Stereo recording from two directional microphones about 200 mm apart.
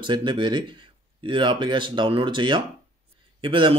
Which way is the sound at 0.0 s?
25° right (ahead or behind).